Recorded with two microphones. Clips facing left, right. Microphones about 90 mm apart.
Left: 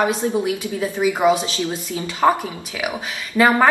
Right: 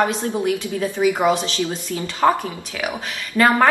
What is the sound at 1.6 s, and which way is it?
Speech, 20° left (ahead or behind).